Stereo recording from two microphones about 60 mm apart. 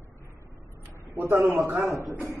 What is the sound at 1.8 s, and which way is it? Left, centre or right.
Speech, right.